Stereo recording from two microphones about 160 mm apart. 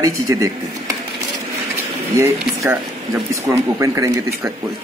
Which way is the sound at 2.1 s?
20° right (ahead or behind).